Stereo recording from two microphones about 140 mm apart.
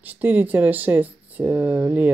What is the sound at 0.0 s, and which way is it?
Speech, 10° right (ahead or behind).